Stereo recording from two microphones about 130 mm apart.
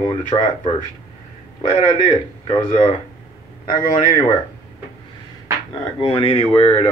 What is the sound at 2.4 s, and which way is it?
Speech, 30° left (ahead or behind).